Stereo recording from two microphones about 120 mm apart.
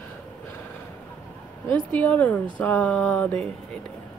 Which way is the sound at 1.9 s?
10° left (ahead or behind).